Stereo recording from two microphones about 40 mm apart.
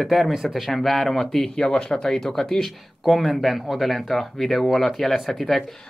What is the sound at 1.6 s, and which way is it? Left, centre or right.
Speech, centre.